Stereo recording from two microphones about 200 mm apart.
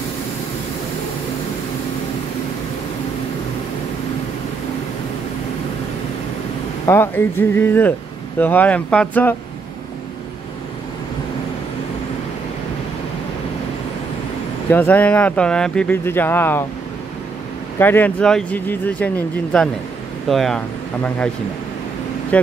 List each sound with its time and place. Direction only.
6.9 s speech: 10° left (ahead or behind)
14.7 s speech: 10° left (ahead or behind)
17.7 s speech: 10° left (ahead or behind)
22.3 s speech: 5° left (ahead or behind)